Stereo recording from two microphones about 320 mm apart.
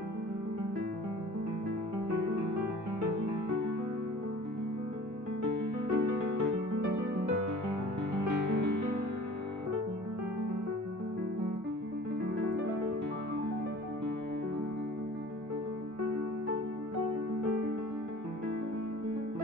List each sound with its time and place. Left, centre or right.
5.4 s music: right
8.3 s music: right